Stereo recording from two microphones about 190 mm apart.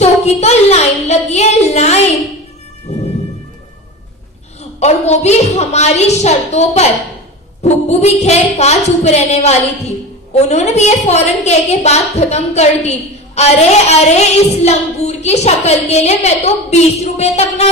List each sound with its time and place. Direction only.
0.0 s a sound: 35° left (ahead or behind)
2.9 s music: 35° left (ahead or behind)
4.7 s a woman's voice: 35° left (ahead or behind)